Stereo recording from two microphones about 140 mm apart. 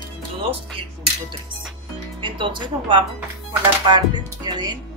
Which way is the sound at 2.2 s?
35° right (ahead or behind).